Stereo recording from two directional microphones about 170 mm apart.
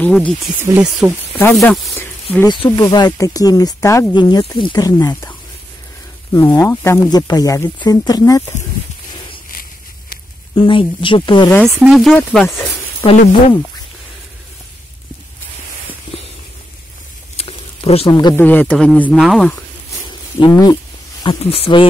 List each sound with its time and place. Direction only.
0.0 s speech: 10° left (ahead or behind)
0.6 s speech: 10° right (ahead or behind)
1.4 s speech: 5° left (ahead or behind)
2.4 s speech: 25° left (ahead or behind)
6.5 s speech: 15° left (ahead or behind)
10.7 s speech: 30° left (ahead or behind)
11.8 s speech: centre (ahead or behind)
12.2 s speech: 10° left (ahead or behind)
13.0 s speech: 20° left (ahead or behind)
17.4 s a sound: 35° left (ahead or behind)
18.1 s speech: 25° left (ahead or behind)
18.4 s speech: 10° left (ahead or behind)
20.1 s a sound: 25° left (ahead or behind)
21.2 s speech: 30° left (ahead or behind)